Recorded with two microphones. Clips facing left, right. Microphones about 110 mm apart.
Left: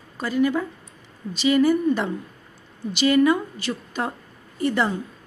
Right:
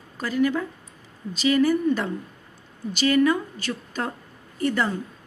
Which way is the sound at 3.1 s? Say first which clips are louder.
Left 2 dB; 15° left (ahead or behind).